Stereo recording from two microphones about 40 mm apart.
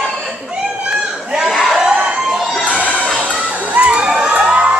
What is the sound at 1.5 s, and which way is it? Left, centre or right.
Crowd, centre.